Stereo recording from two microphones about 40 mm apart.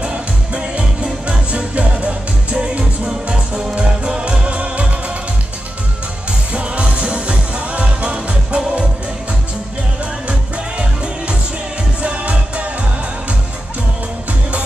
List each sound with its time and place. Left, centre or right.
0.0 s music: right
6.5 s music: right
12.0 s music: right